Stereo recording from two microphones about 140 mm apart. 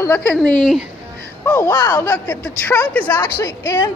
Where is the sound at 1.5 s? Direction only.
15° left (ahead or behind).